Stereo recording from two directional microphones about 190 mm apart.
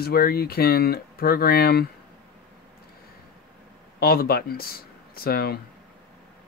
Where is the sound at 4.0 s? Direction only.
50° left (ahead or behind).